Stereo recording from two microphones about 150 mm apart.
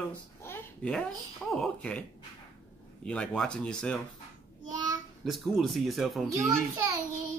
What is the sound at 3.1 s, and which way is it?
Speech, 5° left (ahead or behind).